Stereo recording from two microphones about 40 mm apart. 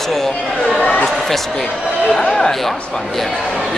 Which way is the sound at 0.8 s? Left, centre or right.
Left.